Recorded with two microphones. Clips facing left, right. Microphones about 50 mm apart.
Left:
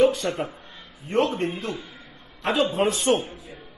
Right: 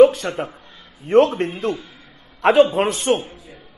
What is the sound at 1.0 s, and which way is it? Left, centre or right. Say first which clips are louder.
A man's voice: right 8 dB; right.